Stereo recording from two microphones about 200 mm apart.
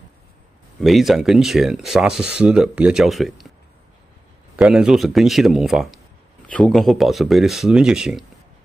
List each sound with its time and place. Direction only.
0.7 s speech: centre (ahead or behind)
4.6 s speech: 5° right (ahead or behind)